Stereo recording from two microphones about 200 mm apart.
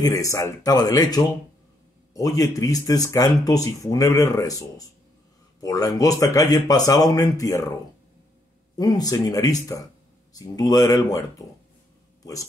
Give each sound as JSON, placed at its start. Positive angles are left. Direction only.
{"t": 0.0, "sound": "speech", "side_deg": 15}
{"t": 8.7, "sound": "speech", "side_deg": 20}